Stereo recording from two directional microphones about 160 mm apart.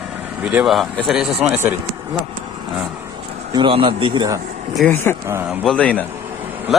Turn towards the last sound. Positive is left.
turn(degrees=5)  # may be behind; listen again after turning